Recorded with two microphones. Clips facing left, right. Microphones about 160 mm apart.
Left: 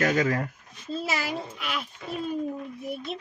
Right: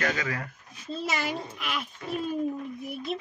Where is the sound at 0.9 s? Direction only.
Centre (ahead or behind).